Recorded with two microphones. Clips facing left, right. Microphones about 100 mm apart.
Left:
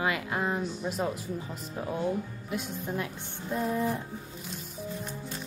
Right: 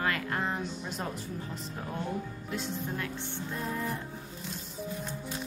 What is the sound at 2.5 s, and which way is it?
Speech, 10° left (ahead or behind).